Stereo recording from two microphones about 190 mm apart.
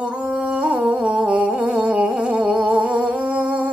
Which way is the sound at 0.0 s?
5° right (ahead or behind).